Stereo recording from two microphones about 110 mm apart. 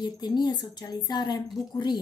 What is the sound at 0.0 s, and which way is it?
Speech, 40° left (ahead or behind).